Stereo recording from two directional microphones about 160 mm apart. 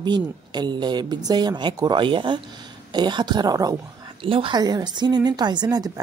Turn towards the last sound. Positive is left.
turn(degrees=-25)  # may be behind; listen again after turning